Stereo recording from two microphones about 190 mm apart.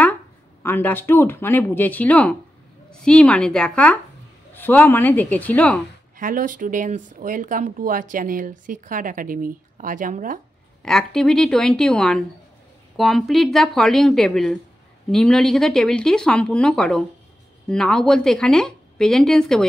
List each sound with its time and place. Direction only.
0.6 s speech: 10° left (ahead or behind)
6.1 s speech: 45° right (ahead or behind)
10.8 s speech: 5° left (ahead or behind)